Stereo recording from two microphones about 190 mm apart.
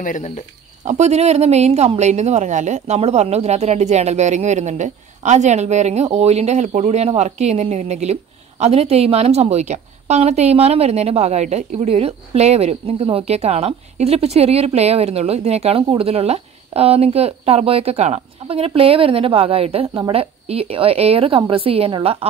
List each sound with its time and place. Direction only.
0.0 s speech: 40° left (ahead or behind)
0.8 s speech: 35° right (ahead or behind)